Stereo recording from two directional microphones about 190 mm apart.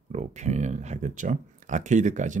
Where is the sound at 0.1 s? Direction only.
40° right (ahead or behind).